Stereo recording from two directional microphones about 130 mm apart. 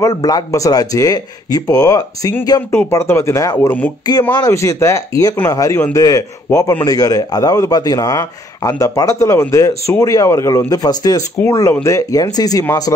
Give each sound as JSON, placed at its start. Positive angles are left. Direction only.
{"t": 0.0, "sound": "a man's voice", "side_deg": 30}